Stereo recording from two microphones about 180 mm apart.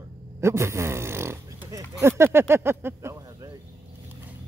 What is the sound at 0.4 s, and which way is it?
Speech, 15° right (ahead or behind).